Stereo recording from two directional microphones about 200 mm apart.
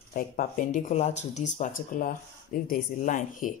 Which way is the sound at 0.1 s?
40° left (ahead or behind).